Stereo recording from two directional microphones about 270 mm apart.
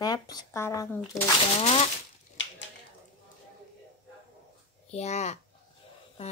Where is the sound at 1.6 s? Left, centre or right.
Left.